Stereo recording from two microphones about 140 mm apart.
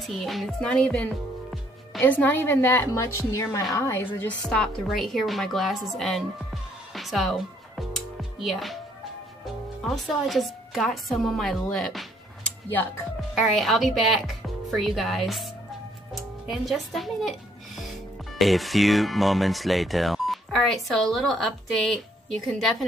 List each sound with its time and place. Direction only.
0.0 s a woman's voice: centre (ahead or behind)
9.8 s a woman's voice: centre (ahead or behind)